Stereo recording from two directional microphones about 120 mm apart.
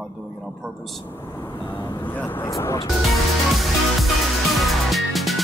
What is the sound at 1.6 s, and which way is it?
Speech, 20° left (ahead or behind).